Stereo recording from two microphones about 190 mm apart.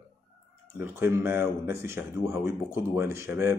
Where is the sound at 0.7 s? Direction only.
10° right (ahead or behind).